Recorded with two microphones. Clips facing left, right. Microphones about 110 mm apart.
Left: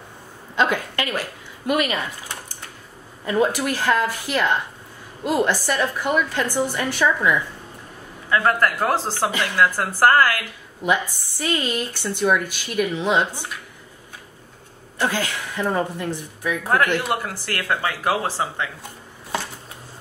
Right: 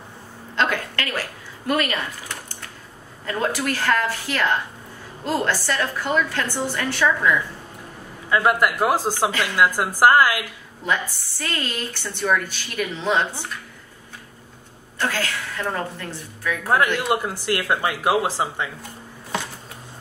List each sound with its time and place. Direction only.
0.6 s a woman's voice: 15° left (ahead or behind)
3.3 s speech: 15° left (ahead or behind)
8.3 s speech: 10° right (ahead or behind)
10.8 s speech: 15° left (ahead or behind)
15.0 s speech: 15° left (ahead or behind)
16.6 s speech: 15° right (ahead or behind)